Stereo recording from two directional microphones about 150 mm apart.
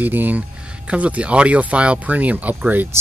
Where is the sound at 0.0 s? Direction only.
10° right (ahead or behind).